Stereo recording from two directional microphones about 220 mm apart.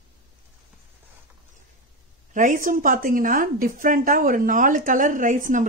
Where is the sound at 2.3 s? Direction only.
35° right (ahead or behind).